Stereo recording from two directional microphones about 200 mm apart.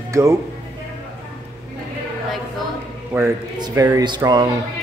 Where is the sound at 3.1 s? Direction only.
15° right (ahead or behind).